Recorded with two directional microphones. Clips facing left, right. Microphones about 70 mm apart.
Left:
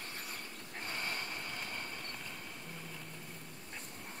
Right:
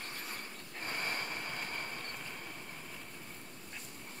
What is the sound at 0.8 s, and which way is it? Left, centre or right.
Vehicle, right.